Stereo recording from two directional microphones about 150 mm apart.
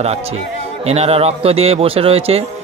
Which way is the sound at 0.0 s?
45° right (ahead or behind).